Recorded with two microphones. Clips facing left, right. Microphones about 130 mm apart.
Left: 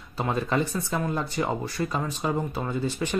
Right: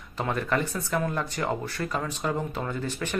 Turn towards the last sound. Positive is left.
turn(degrees=15)  # may be behind; listen again after turning